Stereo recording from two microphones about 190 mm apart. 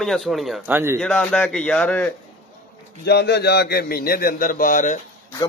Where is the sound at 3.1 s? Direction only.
60° left (ahead or behind); by 4.9 s 45° left (ahead or behind).